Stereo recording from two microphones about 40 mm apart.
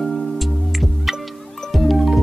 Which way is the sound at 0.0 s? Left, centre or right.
Centre.